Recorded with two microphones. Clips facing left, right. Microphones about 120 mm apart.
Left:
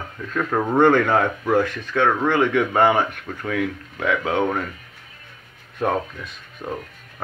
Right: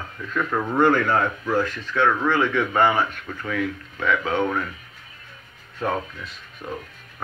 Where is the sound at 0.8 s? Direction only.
70° left (ahead or behind); by 4.6 s 50° left (ahead or behind).